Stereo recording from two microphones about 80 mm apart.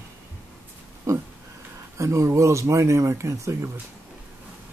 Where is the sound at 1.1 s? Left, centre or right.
Right.